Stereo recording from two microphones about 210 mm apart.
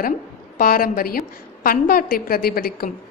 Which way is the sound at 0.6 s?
45° left (ahead or behind).